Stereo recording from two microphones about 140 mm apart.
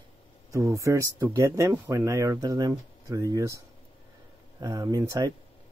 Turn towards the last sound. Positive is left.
turn(degrees=-25)  # may be behind; listen again after turning